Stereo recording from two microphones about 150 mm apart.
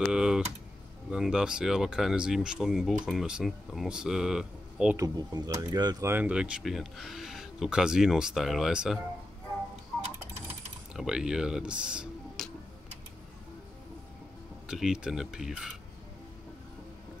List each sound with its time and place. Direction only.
0.1 s typing: 5° right (ahead or behind)
1.1 s speech: 5° right (ahead or behind)
4.9 s speech: 20° right (ahead or behind)
6.0 s speech: 10° right (ahead or behind)
10.9 s speech: 5° right (ahead or behind)
14.7 s speech: 5° right (ahead or behind)